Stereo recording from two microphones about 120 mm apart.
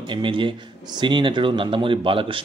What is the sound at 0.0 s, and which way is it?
Speech, 45° right (ahead or behind).